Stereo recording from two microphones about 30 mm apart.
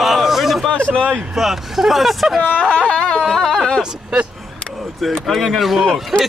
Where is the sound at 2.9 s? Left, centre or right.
Left.